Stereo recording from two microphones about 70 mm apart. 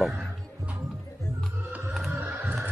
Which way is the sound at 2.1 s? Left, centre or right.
Right.